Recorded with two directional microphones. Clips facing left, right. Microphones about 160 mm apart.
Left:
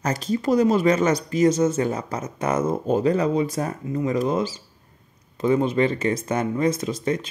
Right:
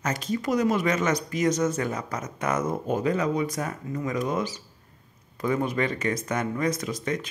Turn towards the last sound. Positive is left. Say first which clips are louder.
# left 5 dB
turn(degrees=30)  # may be behind; listen again after turning